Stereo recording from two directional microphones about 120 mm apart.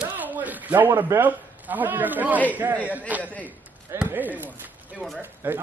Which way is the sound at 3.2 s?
15° left (ahead or behind).